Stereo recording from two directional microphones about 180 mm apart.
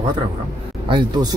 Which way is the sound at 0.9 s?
25° right (ahead or behind).